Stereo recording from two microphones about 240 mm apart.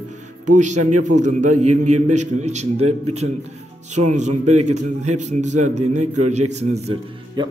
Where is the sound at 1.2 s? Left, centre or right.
Right.